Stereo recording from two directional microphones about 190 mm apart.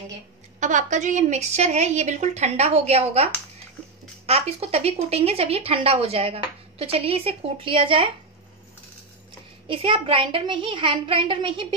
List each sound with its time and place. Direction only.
0.6 s a woman's voice: 40° right (ahead or behind)
9.7 s a woman's voice: 25° right (ahead or behind)